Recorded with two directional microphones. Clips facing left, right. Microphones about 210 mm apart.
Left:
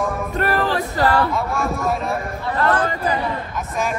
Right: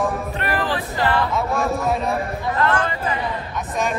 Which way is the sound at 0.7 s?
40° left (ahead or behind).